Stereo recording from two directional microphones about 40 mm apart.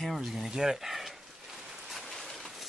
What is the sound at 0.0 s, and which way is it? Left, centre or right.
Speech, centre.